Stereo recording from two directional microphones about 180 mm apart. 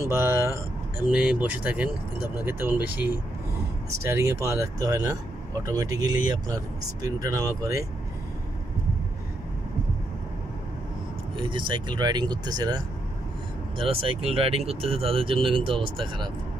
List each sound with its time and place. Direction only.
0.0 s speech: 15° right (ahead or behind)
11.3 s speech: 25° right (ahead or behind)